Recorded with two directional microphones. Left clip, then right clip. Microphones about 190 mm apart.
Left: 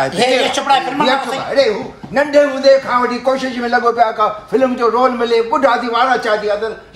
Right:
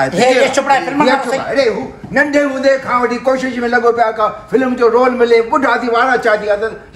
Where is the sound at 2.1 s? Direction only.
20° left (ahead or behind).